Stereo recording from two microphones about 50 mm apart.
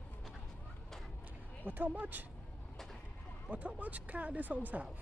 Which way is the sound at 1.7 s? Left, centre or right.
Right.